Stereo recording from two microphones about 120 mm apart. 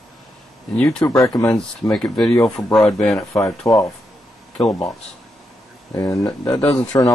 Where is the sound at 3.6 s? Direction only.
30° left (ahead or behind).